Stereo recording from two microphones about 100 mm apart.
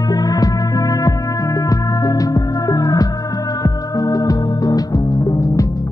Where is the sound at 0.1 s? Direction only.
40° left (ahead or behind).